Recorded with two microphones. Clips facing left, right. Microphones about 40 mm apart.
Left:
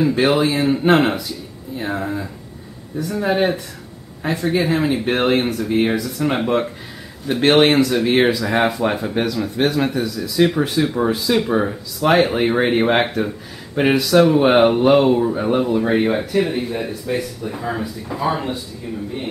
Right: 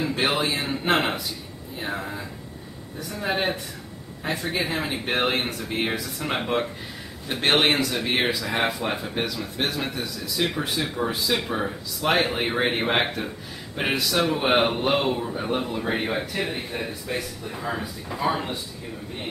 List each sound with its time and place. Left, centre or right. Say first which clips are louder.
0.0 s speech: left 8 dB; centre
3.3 s speech: left 6 dB; centre
15.1 s speech: left 9 dB; centre